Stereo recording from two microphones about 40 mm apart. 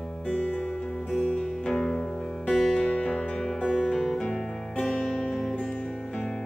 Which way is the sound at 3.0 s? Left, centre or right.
Left.